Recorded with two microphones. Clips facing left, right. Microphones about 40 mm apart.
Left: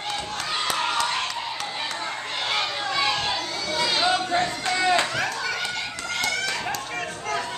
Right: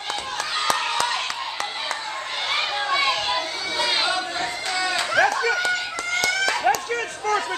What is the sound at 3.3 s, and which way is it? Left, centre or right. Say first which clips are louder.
Chatter: right 2 dB; centre.